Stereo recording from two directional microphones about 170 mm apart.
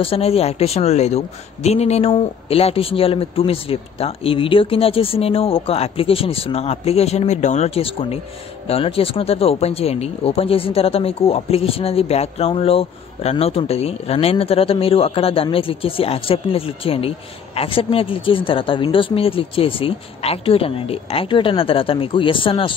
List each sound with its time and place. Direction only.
0.0 s speech: 35° left (ahead or behind)